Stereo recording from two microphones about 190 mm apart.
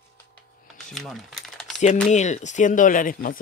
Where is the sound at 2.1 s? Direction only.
35° left (ahead or behind).